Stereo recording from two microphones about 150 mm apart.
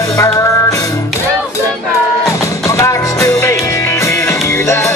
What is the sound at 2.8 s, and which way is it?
Music, 20° left (ahead or behind).